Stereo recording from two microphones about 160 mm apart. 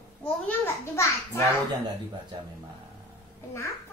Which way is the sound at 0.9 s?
15° left (ahead or behind).